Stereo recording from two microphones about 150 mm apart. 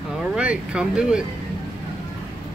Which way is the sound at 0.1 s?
5° right (ahead or behind).